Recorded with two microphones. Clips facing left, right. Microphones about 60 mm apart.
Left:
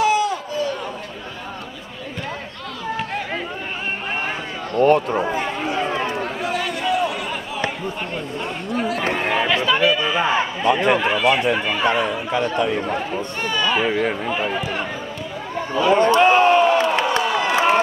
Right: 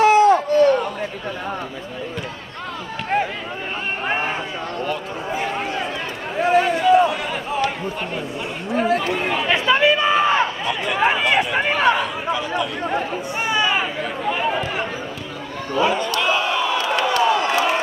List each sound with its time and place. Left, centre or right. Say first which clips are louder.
0.0 s a sound: right 6 dB; right
4.7 s run: left 13 dB; left
6.4 s chatter: right 10 dB; right
8.7 s chatter: right 5 dB; right
9.0 s chatter: left 1 dB; left
9.7 s chatter: right 2 dB; right
10.6 s speech: left 7 dB; left
11.0 s speech: right 1 dB; right
12.5 s speech: left 3 dB; left
12.8 s speech: right 1 dB; centre
14.3 s speech: right 1 dB; centre
16.1 s a sound: left 7 dB; left
16.9 s crowd: right 2 dB; left